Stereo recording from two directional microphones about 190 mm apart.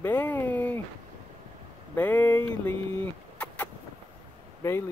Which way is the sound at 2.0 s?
10° left (ahead or behind).